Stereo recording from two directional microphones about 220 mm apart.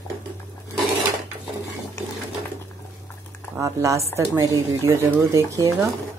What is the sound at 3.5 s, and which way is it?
A woman's voice, 15° right (ahead or behind).